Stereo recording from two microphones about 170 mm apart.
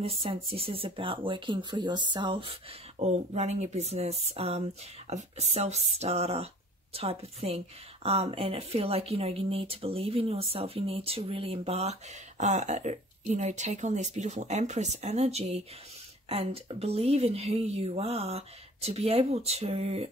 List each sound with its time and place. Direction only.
0.0 s speech: 35° right (ahead or behind)
3.0 s speech: 40° right (ahead or behind)